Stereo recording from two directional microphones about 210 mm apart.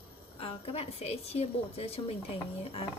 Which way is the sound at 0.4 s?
25° left (ahead or behind).